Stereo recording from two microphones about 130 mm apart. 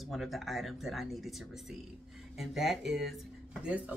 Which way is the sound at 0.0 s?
Centre (ahead or behind).